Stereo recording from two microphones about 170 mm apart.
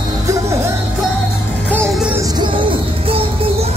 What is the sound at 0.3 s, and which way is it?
Music, 15° right (ahead or behind).